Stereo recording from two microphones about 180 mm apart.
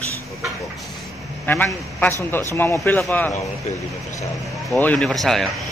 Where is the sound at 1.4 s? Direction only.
10° left (ahead or behind).